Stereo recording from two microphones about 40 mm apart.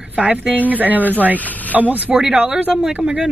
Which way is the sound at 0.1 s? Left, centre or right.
Right.